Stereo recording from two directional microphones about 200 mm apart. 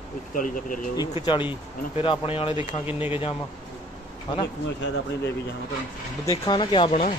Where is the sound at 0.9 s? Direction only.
25° left (ahead or behind).